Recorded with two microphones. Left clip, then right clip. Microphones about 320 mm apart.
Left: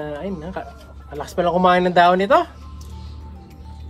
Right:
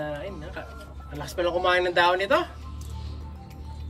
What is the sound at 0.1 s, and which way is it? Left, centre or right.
Speech, centre.